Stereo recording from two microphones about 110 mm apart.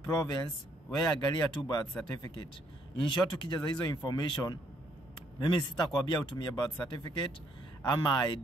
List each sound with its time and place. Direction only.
0.1 s speech: 35° left (ahead or behind)